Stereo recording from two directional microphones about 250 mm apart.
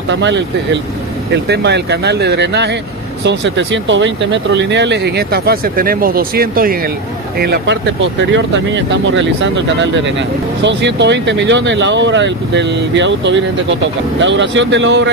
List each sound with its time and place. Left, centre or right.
0.1 s speech: right